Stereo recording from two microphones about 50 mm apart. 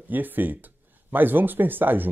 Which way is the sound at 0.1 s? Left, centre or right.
Right.